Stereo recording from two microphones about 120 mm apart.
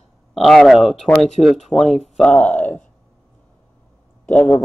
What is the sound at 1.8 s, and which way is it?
Speech, 65° left (ahead or behind).